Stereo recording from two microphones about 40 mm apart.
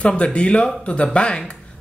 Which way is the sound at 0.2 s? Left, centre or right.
Left.